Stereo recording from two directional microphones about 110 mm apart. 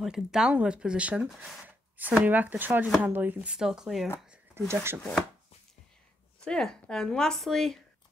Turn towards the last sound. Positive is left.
turn(degrees=0)  # may be behind; listen again after turning